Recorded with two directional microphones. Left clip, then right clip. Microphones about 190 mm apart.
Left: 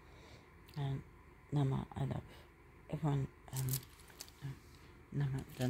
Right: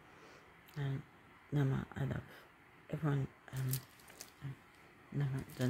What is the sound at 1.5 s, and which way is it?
Speech, 10° right (ahead or behind).